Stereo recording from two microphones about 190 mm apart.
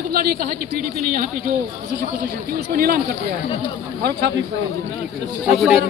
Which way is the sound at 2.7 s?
50° right (ahead or behind).